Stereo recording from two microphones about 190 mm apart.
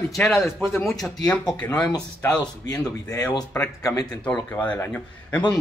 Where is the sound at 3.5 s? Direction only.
15° left (ahead or behind).